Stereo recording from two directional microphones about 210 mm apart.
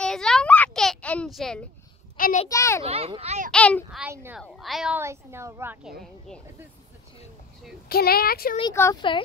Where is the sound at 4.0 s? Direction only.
10° right (ahead or behind).